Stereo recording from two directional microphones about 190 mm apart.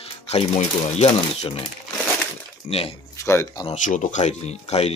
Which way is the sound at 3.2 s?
15° left (ahead or behind).